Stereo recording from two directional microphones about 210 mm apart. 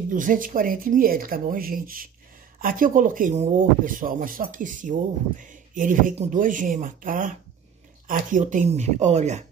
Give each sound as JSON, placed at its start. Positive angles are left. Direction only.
{"t": 0.1, "sound": "speech", "side_deg": -40}